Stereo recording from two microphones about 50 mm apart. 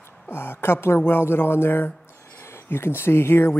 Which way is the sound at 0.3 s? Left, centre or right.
Left.